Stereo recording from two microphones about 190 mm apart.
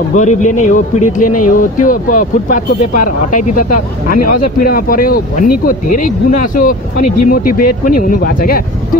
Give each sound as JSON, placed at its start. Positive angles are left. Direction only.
{"t": 0.1, "sound": "speech", "side_deg": 40}